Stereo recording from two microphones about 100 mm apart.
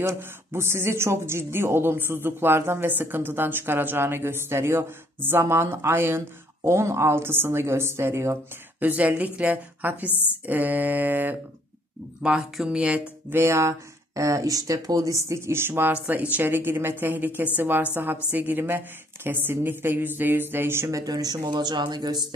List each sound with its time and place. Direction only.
0.0 s speech: 25° right (ahead or behind)
10.1 s speech: 20° left (ahead or behind)
10.4 s mantra: 15° right (ahead or behind)
13.3 s speech: 25° right (ahead or behind); by 22.2 s 45° right (ahead or behind)